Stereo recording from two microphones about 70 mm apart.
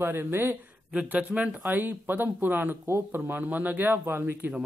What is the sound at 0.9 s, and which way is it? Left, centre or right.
Speech, centre.